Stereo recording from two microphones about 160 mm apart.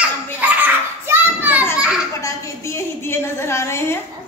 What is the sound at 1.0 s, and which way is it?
Speech, 10° right (ahead or behind).